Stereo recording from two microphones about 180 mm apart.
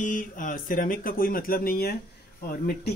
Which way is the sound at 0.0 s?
45° left (ahead or behind).